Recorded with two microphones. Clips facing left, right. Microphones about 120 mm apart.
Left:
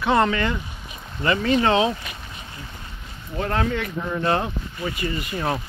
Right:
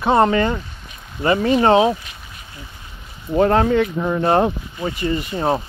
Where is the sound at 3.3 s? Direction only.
35° right (ahead or behind).